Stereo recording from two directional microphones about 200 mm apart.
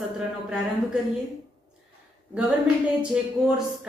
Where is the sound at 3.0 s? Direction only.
5° right (ahead or behind).